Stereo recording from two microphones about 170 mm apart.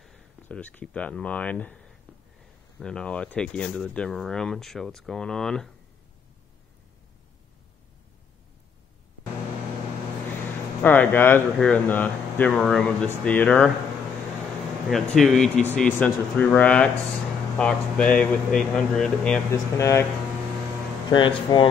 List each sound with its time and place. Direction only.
0.0 s speech: centre (ahead or behind)
10.8 s speech: 10° left (ahead or behind)
14.9 s speech: centre (ahead or behind)
19.8 s speech: 15° left (ahead or behind)
21.1 s speech: 30° left (ahead or behind)